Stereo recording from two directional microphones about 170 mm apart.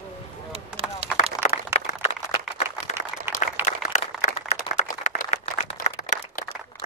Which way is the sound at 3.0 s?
15° right (ahead or behind).